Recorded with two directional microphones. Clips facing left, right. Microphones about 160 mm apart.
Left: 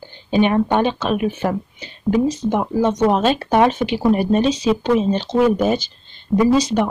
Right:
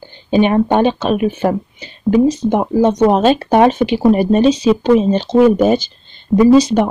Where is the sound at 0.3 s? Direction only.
20° right (ahead or behind).